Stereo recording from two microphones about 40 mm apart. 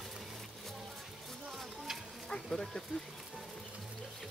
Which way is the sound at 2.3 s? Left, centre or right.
Centre.